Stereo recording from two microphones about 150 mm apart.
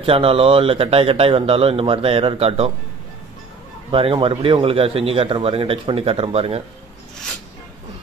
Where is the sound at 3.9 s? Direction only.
40° right (ahead or behind).